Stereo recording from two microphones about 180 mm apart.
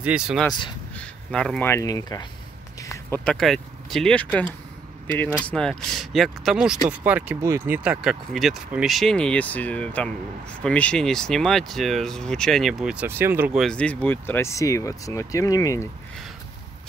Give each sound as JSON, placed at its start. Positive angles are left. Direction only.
{"t": 0.0, "sound": "speech", "side_deg": -5}
{"t": 2.8, "sound": "a sound", "side_deg": 15}
{"t": 3.3, "sound": "speech", "side_deg": 0}
{"t": 13.6, "sound": "speech", "side_deg": 5}